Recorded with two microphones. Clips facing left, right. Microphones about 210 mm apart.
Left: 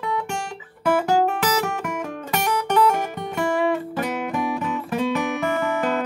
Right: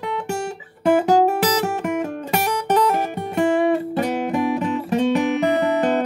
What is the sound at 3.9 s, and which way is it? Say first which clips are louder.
Guitar: right 4 dB; 35° right (ahead or behind).